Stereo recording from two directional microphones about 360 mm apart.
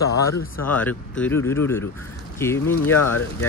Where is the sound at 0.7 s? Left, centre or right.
Centre.